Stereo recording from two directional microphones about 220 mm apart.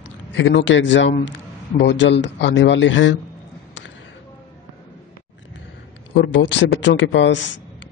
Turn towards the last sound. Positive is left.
turn(degrees=55)  # may be behind; listen again after turning